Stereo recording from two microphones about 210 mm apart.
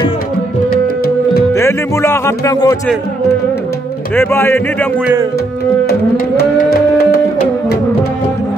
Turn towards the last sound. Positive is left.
turn(degrees=45)  # may be behind; listen again after turning